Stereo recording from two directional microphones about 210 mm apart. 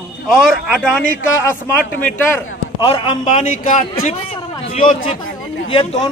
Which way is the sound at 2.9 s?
25° left (ahead or behind).